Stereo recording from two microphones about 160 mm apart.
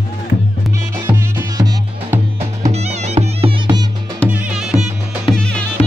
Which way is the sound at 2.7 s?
45° right (ahead or behind).